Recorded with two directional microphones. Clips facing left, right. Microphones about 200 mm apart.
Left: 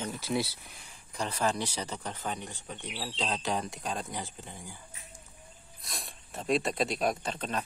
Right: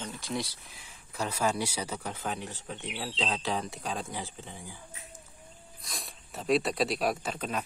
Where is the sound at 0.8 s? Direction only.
5° right (ahead or behind).